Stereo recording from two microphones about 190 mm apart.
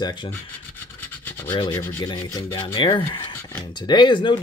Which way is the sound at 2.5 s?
25° left (ahead or behind).